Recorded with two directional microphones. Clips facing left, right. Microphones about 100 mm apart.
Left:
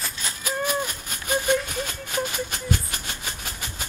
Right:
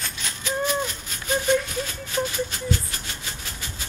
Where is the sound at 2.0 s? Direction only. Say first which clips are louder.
Right 3 dB; 55° left (ahead or behind).